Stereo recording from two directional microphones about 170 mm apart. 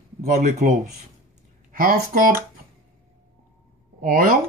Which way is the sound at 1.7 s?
55° right (ahead or behind).